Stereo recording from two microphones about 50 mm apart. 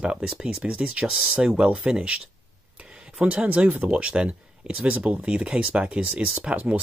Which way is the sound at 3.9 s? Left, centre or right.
Centre.